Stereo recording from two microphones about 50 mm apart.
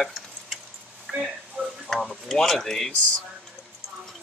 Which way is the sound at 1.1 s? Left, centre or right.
Centre.